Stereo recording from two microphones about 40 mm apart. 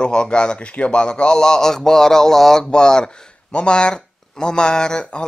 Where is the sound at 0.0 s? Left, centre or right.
Left.